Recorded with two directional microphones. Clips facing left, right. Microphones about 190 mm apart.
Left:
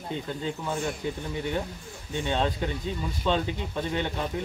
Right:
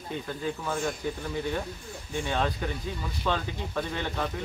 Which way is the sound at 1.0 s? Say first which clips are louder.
Left 1 dB; 20° left (ahead or behind).